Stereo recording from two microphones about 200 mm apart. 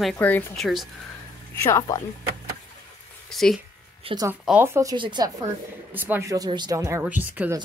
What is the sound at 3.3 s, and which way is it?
Speech, centre (ahead or behind).